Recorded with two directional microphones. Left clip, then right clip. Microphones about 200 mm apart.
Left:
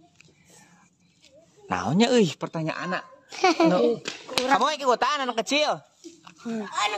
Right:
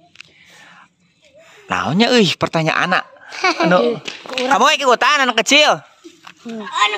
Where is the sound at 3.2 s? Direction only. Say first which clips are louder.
Right 1 dB; 55° left (ahead or behind).